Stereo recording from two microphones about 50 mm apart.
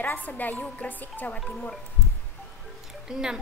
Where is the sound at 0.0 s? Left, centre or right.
Left.